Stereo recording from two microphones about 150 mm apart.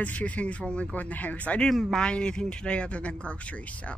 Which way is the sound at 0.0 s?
10° left (ahead or behind).